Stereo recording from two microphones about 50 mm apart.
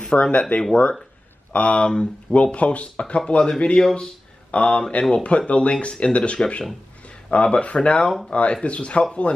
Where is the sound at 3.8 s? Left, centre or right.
Centre.